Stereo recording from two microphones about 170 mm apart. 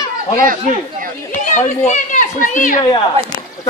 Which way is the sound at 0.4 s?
55° right (ahead or behind).